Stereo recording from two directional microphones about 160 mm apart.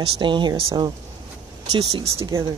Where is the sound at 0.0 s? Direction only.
30° right (ahead or behind).